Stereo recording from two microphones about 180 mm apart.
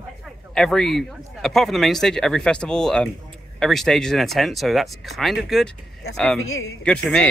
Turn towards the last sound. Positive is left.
turn(degrees=5)  # may be behind; listen again after turning